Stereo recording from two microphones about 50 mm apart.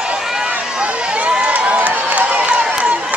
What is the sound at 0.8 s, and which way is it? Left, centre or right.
Run, right.